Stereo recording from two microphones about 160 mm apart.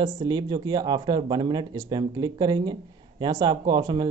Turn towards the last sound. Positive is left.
turn(degrees=-30)  # may be behind; listen again after turning